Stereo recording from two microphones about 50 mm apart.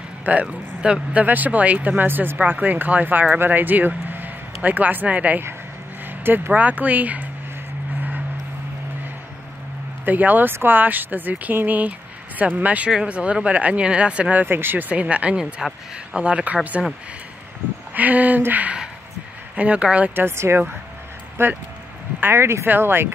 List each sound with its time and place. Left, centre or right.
0.2 s speech: right
6.0 s vehicle: right
6.5 s speech: right
10.0 s speech: right
12.9 s speech: right
14.3 s speech: right
14.9 s speech: right
16.8 s speech: centre
17.9 s speech: right
20.2 s speech: right
22.3 s speech: right
22.7 s speech: right